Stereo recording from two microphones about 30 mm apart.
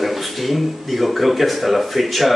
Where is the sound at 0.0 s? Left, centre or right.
Centre.